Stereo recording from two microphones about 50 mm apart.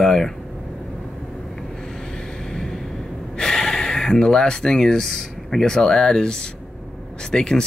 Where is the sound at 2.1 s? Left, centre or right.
Centre.